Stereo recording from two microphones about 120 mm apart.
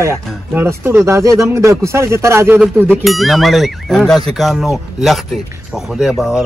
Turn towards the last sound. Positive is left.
turn(degrees=-5)  # may be behind; listen again after turning